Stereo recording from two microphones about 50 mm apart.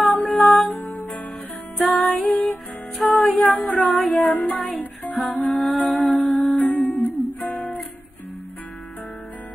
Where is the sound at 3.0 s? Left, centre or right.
Centre.